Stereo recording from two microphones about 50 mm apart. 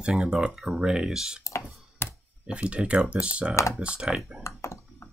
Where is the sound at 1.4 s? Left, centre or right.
Left.